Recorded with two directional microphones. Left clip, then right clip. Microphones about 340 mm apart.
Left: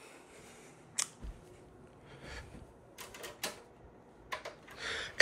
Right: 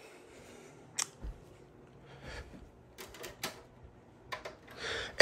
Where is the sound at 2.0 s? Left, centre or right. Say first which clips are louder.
Right 1 dB; centre.